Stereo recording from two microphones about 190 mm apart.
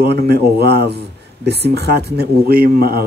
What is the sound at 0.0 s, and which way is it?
Speech, 55° right (ahead or behind).